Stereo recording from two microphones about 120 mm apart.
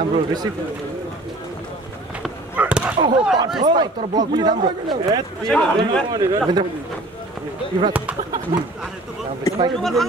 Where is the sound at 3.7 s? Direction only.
35° right (ahead or behind).